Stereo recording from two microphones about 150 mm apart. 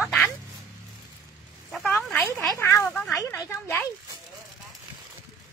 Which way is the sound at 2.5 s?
15° left (ahead or behind).